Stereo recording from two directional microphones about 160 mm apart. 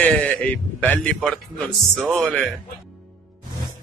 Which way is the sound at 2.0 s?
5° left (ahead or behind).